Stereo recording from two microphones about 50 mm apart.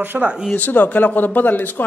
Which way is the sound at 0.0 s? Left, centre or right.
Right.